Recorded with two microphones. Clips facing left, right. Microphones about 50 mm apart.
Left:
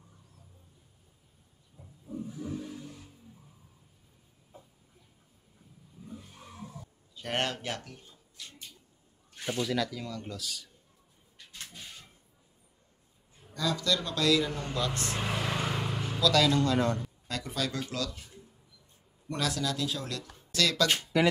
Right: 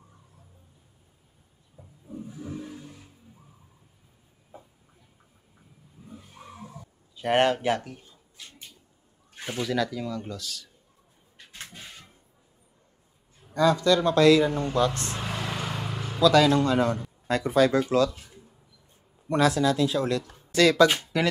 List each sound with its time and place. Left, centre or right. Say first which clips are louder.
1.8 s a sound: even; centre
6.0 s a sound: right 2 dB; centre
9.7 s speech: right 4 dB; centre
11.3 s a sound: right 3 dB; right
13.4 s a man's voice: right 10 dB; right
15.1 s vehicle: even; centre
16.2 s speech: right 6 dB; right
17.3 s a man's voice: right 13 dB; right
19.2 s speech: right 10 dB; right